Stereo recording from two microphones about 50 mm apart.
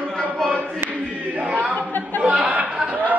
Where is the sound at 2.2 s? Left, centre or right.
Right.